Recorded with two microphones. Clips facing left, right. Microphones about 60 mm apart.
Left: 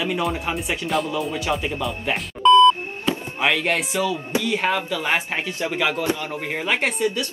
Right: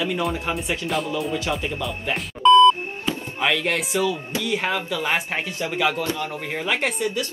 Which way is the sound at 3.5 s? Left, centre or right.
Centre.